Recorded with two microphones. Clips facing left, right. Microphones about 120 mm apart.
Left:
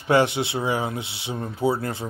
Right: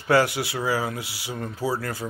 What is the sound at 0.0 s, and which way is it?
Speech, 20° left (ahead or behind).